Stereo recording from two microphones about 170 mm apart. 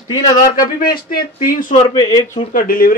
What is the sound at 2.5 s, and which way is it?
Speech, 60° left (ahead or behind).